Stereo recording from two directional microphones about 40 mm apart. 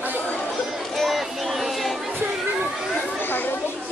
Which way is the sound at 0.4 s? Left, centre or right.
Centre.